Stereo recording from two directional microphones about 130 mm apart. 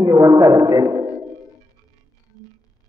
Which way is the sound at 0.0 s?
25° right (ahead or behind).